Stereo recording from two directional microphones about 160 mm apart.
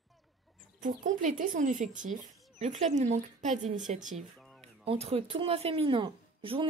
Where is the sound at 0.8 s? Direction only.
50° right (ahead or behind).